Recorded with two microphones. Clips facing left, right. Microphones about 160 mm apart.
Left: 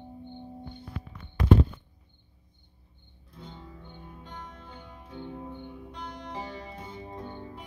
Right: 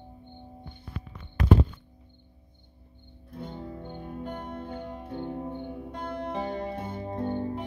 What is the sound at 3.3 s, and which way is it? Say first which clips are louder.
Music: right 8 dB; 55° right (ahead or behind).